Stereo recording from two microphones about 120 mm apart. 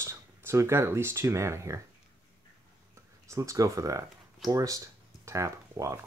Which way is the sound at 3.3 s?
25° right (ahead or behind).